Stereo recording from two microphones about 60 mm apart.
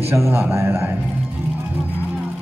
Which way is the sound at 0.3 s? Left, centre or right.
Right.